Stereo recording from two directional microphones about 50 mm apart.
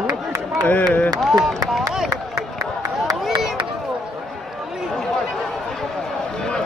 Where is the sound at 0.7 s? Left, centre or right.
Left.